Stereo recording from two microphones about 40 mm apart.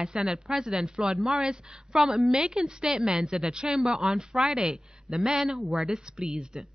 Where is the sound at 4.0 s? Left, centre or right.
Centre.